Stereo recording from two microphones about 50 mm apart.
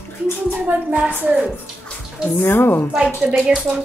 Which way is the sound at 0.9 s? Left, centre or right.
Right.